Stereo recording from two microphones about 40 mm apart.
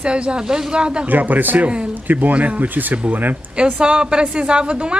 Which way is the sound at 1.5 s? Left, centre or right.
Right.